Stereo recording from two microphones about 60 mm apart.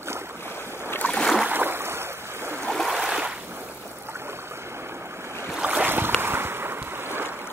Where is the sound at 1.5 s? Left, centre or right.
Right.